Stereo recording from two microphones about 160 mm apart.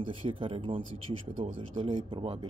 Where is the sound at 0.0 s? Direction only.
35° right (ahead or behind).